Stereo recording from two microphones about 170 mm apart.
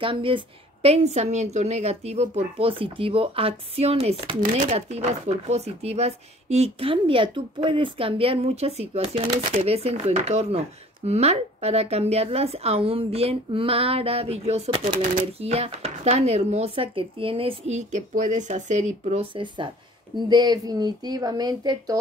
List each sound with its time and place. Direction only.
0.0 s speech: 30° right (ahead or behind)